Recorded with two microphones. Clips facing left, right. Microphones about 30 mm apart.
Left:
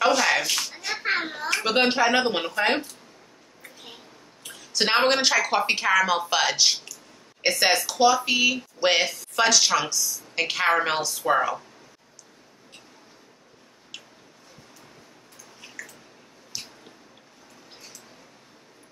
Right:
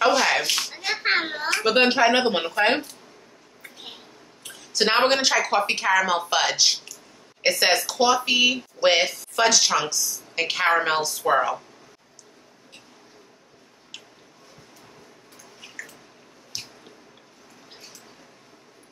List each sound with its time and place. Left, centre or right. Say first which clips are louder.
0.1 s slap: right 1 dB; centre
0.4 s speech: right 2 dB; centre
1.5 s a woman's voice: right 2 dB; centre
4.4 s a woman's voice: right 2 dB; centre
13.9 s a sound: even; centre
15.6 s a sound: right 1 dB; centre
16.5 s squish: right 1 dB; centre